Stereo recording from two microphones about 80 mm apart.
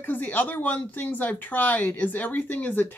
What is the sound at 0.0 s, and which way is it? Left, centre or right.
Speech, left.